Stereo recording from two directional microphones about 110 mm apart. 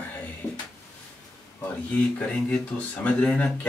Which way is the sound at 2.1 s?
10° left (ahead or behind).